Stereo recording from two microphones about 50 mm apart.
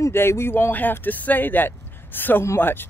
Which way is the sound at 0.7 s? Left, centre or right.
Left.